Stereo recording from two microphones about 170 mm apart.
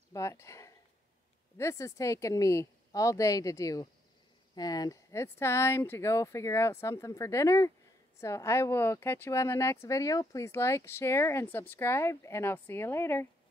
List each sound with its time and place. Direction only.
0.1 s speech: 20° left (ahead or behind)